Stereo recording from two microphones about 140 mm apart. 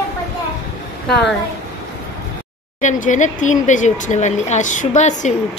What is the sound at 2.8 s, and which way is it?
Speech, 60° left (ahead or behind).